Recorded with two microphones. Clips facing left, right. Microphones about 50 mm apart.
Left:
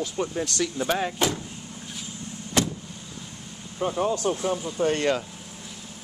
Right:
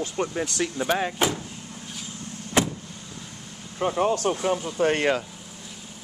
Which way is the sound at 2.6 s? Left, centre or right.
Right.